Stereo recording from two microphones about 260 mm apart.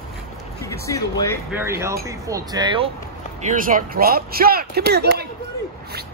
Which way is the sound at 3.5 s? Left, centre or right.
Right.